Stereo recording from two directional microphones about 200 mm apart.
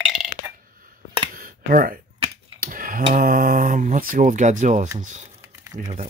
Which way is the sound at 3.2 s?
45° right (ahead or behind).